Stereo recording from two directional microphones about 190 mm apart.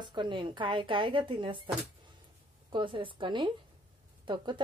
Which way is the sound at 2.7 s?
25° right (ahead or behind).